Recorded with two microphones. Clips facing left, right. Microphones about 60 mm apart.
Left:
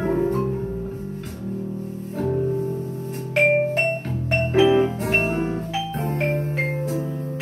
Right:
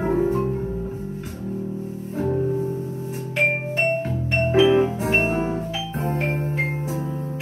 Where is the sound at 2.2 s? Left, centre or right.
Centre.